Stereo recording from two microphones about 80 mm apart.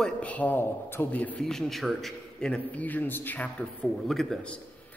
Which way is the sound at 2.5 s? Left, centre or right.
Centre.